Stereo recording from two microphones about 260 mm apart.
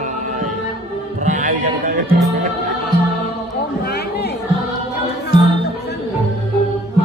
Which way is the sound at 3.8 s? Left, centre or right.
Left.